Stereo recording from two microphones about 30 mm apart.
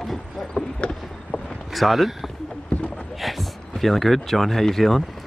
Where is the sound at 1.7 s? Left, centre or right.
Centre.